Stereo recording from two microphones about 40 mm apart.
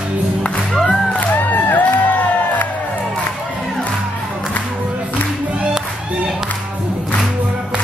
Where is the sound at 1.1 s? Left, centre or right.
Left.